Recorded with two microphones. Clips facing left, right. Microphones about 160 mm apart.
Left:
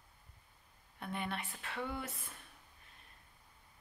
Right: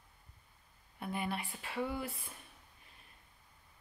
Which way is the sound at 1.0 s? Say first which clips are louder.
Right 2 dB; 5° right (ahead or behind).